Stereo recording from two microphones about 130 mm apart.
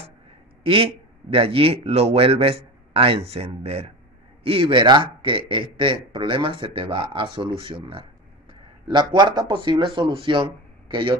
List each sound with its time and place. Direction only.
0.7 s a man's voice: 45° right (ahead or behind)